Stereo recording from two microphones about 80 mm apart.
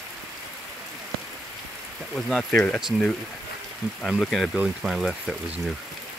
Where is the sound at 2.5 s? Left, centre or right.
Centre.